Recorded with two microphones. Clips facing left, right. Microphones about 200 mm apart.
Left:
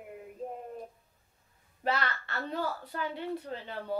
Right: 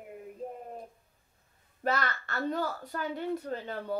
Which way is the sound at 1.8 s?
45° right (ahead or behind).